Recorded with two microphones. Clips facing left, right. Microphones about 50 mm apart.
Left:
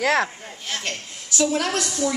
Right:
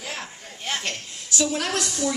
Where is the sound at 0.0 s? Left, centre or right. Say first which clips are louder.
Left 14 dB; left.